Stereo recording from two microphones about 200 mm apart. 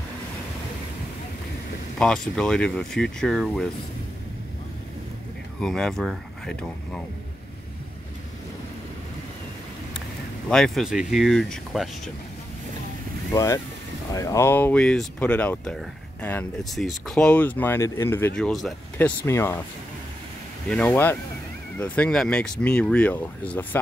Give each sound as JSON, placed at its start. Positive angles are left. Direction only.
{"t": 2.0, "sound": "speech", "side_deg": 5}
{"t": 5.6, "sound": "speech", "side_deg": 5}
{"t": 10.5, "sound": "speech", "side_deg": 0}
{"t": 13.3, "sound": "speech", "side_deg": 15}
{"t": 20.6, "sound": "speech", "side_deg": 5}